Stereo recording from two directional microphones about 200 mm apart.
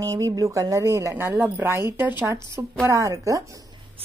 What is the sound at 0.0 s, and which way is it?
Speech, 15° right (ahead or behind).